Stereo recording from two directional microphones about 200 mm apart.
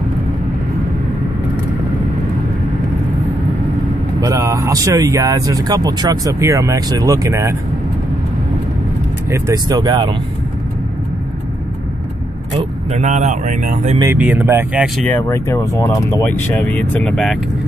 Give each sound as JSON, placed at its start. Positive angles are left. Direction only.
{"t": 4.2, "sound": "speech", "side_deg": -15}
{"t": 9.3, "sound": "speech", "side_deg": -20}
{"t": 12.9, "sound": "speech", "side_deg": -35}
{"t": 14.1, "sound": "speech", "side_deg": -5}
{"t": 15.0, "sound": "speech", "side_deg": 15}